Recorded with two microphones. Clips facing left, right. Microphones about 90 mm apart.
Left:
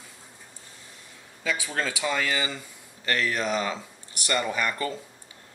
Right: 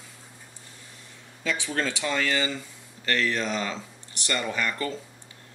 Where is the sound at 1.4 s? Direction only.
5° left (ahead or behind).